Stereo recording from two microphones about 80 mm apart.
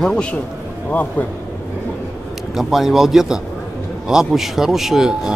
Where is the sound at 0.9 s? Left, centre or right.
Left.